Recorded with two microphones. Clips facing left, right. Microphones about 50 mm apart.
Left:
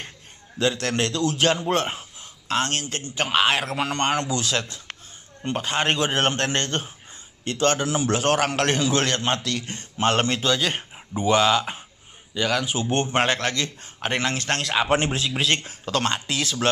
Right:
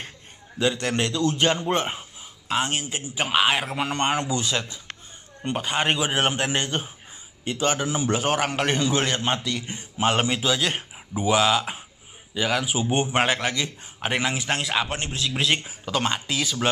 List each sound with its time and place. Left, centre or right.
0.6 s a man's voice: centre
14.9 s a man's voice: left
15.1 s speech: centre